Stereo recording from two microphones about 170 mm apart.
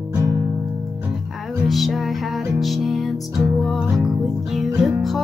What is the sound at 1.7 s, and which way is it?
Music, centre (ahead or behind).